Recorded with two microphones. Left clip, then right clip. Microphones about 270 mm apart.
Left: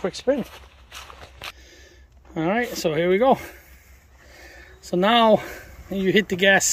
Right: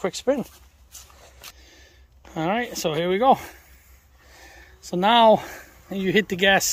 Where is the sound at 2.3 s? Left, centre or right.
Centre.